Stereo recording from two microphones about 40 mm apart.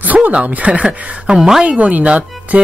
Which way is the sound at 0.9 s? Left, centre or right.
Centre.